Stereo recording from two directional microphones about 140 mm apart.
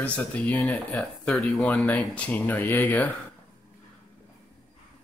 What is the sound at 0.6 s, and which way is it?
Speech, 20° left (ahead or behind).